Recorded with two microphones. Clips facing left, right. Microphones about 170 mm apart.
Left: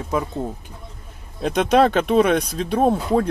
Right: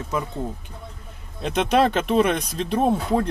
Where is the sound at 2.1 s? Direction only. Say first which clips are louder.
Left 3 dB; centre (ahead or behind).